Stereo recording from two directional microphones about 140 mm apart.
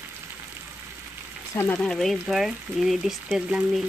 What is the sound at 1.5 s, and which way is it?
Speech, 15° left (ahead or behind).